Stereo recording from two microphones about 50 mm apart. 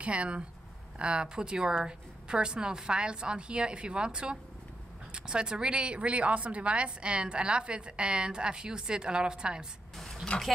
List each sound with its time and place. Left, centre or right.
0.0 s a woman's voice: right